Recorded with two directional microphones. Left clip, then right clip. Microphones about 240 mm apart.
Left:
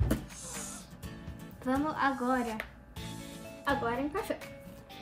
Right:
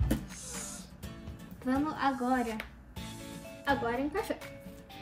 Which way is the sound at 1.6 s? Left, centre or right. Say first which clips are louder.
Left 1 dB; centre.